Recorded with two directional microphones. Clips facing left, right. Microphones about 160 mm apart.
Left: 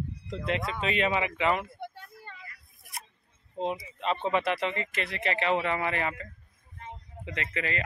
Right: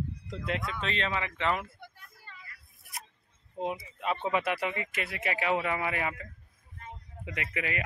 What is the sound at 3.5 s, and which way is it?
Speech, 10° right (ahead or behind).